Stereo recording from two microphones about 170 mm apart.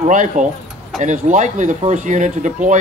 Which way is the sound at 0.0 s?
45° right (ahead or behind).